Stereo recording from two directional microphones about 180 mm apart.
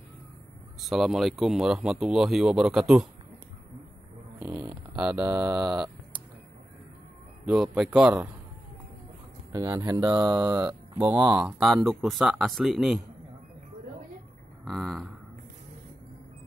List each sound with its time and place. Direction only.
0.7 s speech: centre (ahead or behind)
4.4 s a sound: 15° right (ahead or behind)
7.4 s speech: 5° right (ahead or behind)
9.5 s speech: 20° right (ahead or behind)
11.0 s speech: 10° right (ahead or behind)
14.6 s speech: centre (ahead or behind)